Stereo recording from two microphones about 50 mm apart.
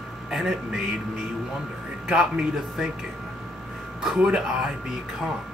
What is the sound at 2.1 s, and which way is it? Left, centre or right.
Speech, centre.